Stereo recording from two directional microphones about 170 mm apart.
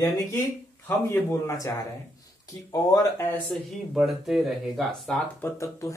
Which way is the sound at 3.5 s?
Centre (ahead or behind).